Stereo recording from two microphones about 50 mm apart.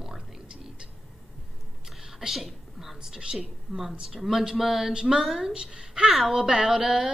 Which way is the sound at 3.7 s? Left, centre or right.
Centre.